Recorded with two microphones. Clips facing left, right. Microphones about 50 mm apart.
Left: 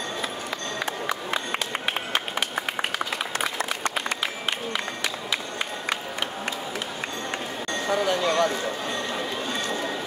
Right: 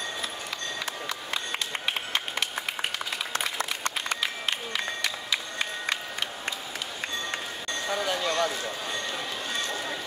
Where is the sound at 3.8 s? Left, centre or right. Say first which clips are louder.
Left 3 dB; left.